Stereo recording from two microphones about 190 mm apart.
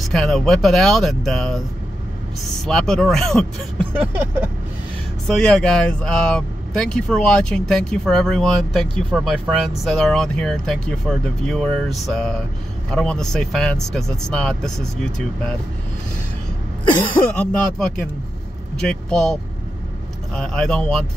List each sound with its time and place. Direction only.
0.1 s speech: centre (ahead or behind)
2.6 s speech: centre (ahead or behind)
5.3 s speech: 5° left (ahead or behind)
17.5 s speech: 5° left (ahead or behind)
20.3 s speech: 5° left (ahead or behind)